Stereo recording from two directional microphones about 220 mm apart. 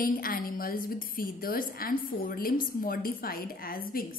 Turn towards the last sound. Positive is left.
turn(degrees=40)  # may be behind; listen again after turning